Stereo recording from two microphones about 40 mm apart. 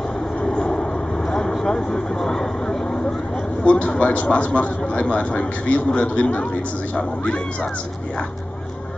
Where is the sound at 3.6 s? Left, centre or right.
Left.